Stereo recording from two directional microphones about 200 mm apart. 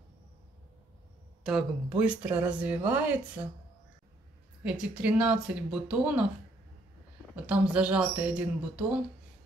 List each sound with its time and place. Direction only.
1.4 s speech: 5° right (ahead or behind)
4.6 s speech: 5° right (ahead or behind)
7.4 s speech: 5° right (ahead or behind)